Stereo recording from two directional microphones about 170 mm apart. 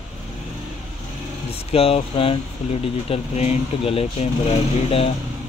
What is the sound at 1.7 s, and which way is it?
Speech, 35° left (ahead or behind).